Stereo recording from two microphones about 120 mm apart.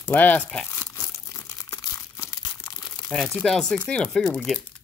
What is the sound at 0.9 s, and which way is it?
Crumpling, 20° left (ahead or behind).